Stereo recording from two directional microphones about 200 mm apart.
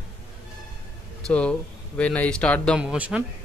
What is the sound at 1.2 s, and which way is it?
Speech, 5° left (ahead or behind).